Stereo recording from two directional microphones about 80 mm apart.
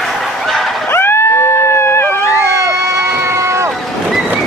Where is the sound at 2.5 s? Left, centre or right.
Right.